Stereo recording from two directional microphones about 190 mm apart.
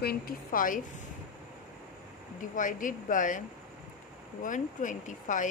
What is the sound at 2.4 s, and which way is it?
Speech, 45° left (ahead or behind).